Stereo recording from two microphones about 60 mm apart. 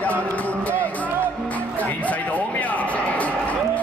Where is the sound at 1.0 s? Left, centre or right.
Right.